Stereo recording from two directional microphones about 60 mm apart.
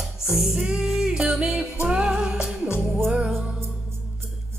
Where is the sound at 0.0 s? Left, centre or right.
Centre.